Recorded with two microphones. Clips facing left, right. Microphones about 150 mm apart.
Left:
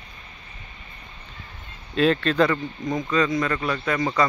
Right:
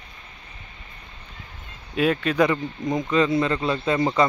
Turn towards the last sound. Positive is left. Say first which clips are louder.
# right 2 dB
turn(degrees=-25)  # may be behind; listen again after turning